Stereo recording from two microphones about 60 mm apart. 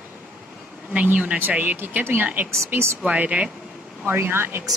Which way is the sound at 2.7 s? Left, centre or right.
Right.